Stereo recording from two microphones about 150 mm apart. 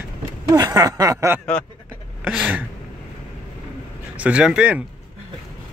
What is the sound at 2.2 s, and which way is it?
Speech, 10° right (ahead or behind).